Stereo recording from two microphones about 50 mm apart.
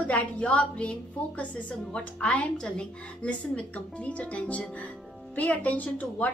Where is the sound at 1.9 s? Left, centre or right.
Left.